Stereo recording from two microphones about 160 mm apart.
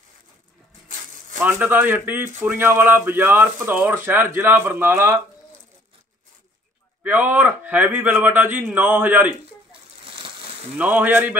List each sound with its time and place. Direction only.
1.4 s a man's voice: 10° right (ahead or behind)
7.0 s a man's voice: 10° right (ahead or behind)
10.0 s a sound: 35° right (ahead or behind)
10.8 s a man's voice: 10° right (ahead or behind)